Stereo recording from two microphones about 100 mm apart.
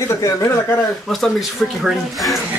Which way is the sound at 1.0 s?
5° left (ahead or behind).